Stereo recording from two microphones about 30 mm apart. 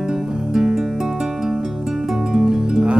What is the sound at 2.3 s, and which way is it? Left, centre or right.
Music, right.